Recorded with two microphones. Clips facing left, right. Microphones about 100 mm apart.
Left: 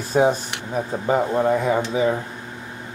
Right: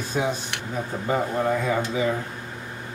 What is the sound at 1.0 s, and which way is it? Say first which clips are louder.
Speech: left 4 dB; 20° left (ahead or behind).